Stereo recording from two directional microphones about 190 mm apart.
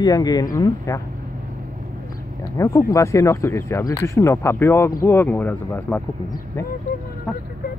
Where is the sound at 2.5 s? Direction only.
15° left (ahead or behind).